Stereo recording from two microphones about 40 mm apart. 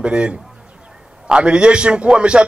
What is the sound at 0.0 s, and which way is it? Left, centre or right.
A man's voice, right.